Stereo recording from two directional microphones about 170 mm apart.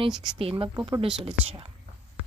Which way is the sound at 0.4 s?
35° right (ahead or behind).